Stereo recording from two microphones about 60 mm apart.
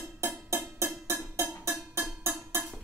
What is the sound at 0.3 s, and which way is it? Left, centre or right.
Music, right.